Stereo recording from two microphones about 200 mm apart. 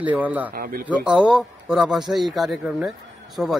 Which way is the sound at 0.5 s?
45° right (ahead or behind).